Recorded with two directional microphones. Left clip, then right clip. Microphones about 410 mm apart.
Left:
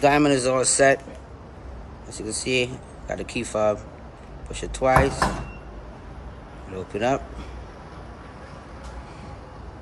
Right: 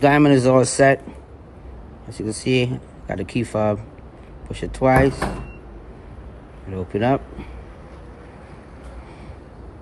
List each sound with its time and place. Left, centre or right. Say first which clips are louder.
0.0 s speech: right 4 dB; centre
2.1 s speech: right 3 dB; centre
6.7 s speech: right 3 dB; centre